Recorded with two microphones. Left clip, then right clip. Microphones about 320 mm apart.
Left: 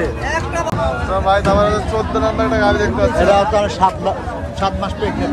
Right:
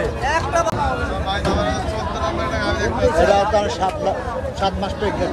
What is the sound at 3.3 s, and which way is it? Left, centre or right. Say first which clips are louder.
Speech: left 3 dB; centre.